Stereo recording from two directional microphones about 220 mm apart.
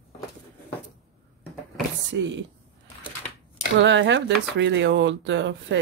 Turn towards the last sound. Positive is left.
turn(degrees=-55)  # may be behind; listen again after turning